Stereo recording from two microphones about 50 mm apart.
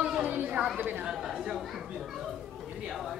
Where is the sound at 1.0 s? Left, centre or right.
Centre.